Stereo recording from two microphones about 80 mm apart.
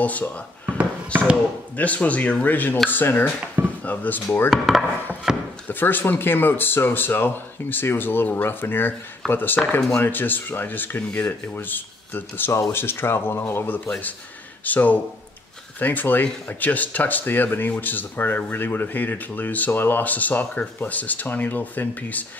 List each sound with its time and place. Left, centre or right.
0.0 s speech: centre
1.8 s speech: centre
4.5 s chopping: centre
5.3 s chop: centre
5.7 s speech: left